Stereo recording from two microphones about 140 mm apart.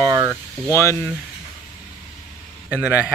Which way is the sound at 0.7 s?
20° left (ahead or behind).